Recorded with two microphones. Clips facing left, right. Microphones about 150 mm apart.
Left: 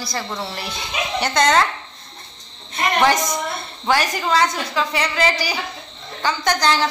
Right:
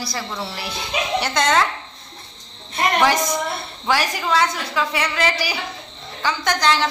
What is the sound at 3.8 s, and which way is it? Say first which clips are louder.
A woman's voice: left 2 dB; 5° right (ahead or behind).